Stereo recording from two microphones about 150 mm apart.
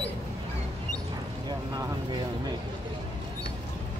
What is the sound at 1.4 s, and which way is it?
Speech, 30° right (ahead or behind).